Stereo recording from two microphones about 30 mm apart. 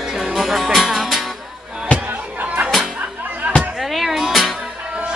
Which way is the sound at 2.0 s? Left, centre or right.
Right.